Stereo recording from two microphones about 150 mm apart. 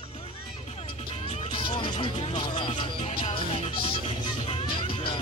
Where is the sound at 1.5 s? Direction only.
35° left (ahead or behind).